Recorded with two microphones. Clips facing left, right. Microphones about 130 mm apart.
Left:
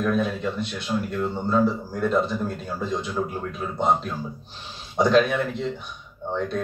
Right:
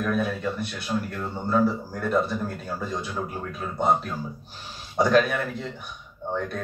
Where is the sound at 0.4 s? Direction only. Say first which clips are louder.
Left 2 dB; 20° left (ahead or behind).